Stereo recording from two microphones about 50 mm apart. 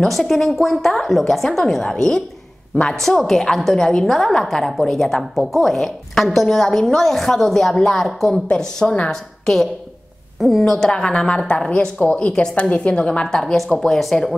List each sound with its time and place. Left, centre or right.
0.0 s a woman's voice: centre
8.5 s a woman's voice: centre
13.3 s a woman's voice: centre